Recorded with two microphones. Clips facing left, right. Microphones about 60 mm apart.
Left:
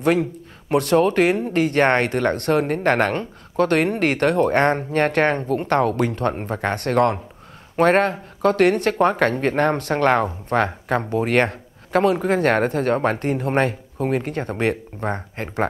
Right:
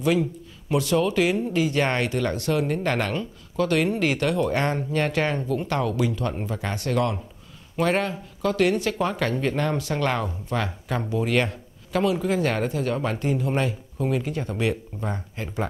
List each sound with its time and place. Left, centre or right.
0.0 s speech: left